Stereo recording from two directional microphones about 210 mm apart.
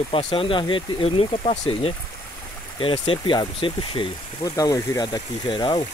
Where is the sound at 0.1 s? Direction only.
25° left (ahead or behind).